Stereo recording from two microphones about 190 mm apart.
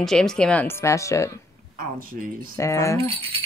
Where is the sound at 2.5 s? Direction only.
15° left (ahead or behind).